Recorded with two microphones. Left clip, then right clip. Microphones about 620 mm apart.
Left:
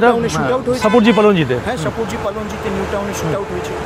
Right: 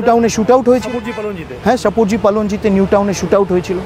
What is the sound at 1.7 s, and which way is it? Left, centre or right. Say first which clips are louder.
Speech: right 7 dB; right.